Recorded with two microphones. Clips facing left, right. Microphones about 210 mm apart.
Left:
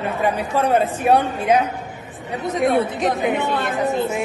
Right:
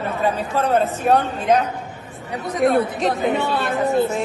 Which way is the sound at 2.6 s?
Centre (ahead or behind).